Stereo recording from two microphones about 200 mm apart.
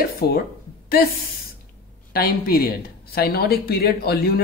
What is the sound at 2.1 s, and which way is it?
Speech, 50° left (ahead or behind).